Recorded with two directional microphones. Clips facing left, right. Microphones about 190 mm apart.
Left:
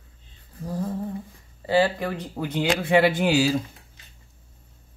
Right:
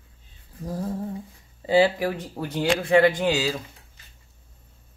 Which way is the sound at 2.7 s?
5° left (ahead or behind).